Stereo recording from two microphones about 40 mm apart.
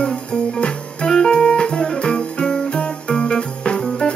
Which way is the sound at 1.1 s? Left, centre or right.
Centre.